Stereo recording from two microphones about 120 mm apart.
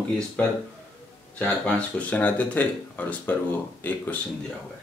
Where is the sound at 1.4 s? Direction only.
10° left (ahead or behind).